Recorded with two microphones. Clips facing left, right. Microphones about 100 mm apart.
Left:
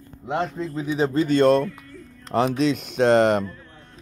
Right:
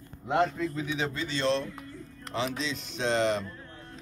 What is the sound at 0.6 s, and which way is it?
Speech, 35° left (ahead or behind).